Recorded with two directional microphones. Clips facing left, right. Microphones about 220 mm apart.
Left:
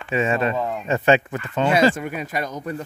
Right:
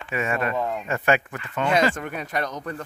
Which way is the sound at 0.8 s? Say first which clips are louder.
Left 7 dB; 25° left (ahead or behind).